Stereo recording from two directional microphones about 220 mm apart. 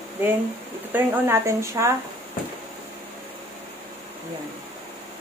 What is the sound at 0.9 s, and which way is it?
Speech, 10° right (ahead or behind).